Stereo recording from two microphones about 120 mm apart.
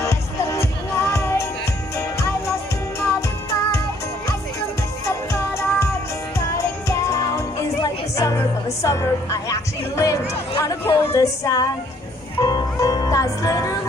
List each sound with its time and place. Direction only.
0.0 s music: 25° left (ahead or behind)
10.6 s speech: 30° left (ahead or behind)
12.4 s music: 30° left (ahead or behind)